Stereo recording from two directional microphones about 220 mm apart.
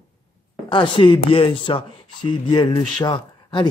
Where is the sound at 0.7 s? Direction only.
20° left (ahead or behind).